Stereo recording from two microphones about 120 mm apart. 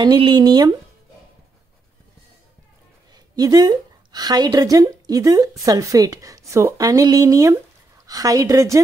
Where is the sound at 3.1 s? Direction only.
35° right (ahead or behind).